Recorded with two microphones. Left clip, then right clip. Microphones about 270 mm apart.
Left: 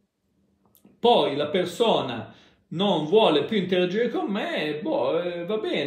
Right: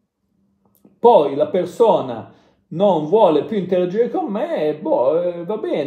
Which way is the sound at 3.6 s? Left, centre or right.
Left.